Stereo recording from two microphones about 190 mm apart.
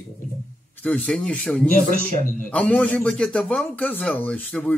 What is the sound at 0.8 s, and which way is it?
A man's voice, 5° left (ahead or behind).